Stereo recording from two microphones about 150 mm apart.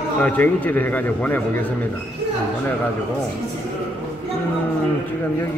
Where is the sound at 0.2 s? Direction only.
10° left (ahead or behind).